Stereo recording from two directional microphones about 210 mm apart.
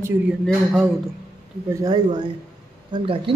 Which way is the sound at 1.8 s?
20° right (ahead or behind).